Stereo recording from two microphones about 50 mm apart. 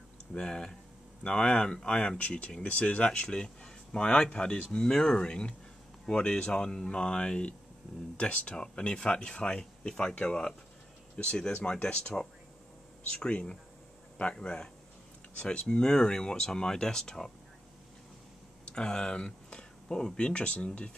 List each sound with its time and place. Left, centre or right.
0.3 s speech: centre
13.1 s speech: left
18.7 s speech: centre